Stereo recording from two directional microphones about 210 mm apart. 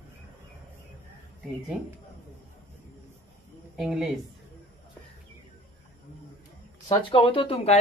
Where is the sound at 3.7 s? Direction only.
Centre (ahead or behind).